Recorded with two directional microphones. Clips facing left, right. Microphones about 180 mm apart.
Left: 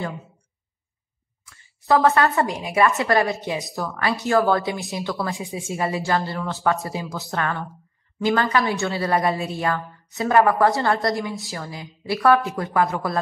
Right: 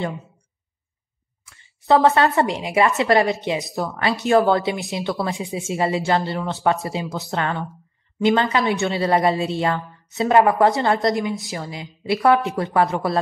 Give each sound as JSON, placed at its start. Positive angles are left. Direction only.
{"t": 1.4, "sound": "a woman's voice", "side_deg": -25}